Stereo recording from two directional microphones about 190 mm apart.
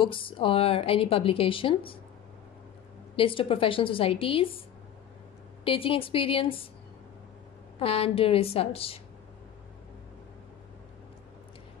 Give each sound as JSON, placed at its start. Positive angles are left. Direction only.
{"t": 0.0, "sound": "a woman's voice", "side_deg": 25}
{"t": 3.2, "sound": "a woman's voice", "side_deg": 30}
{"t": 7.8, "sound": "a woman's voice", "side_deg": 30}